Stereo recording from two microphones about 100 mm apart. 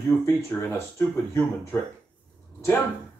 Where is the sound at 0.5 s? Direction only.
20° left (ahead or behind).